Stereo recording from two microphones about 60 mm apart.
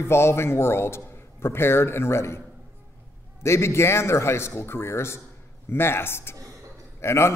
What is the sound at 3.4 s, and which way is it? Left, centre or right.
A man's voice, left.